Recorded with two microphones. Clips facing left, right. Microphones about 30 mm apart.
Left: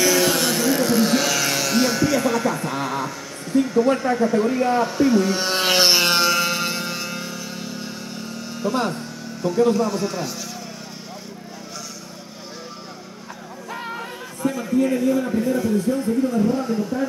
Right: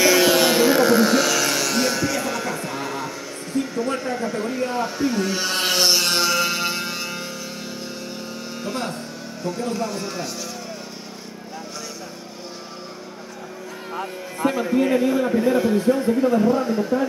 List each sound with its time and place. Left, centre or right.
0.0 s a sound: centre
0.9 s music: centre
5.4 s mantra: centre
5.7 s music: left
6.0 s music: centre
8.7 s speech: centre
14.4 s a man's voice: right